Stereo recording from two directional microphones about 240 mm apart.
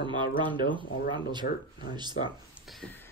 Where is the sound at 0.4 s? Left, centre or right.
Centre.